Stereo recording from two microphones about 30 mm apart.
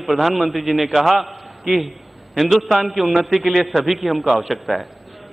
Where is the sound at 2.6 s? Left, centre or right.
Centre.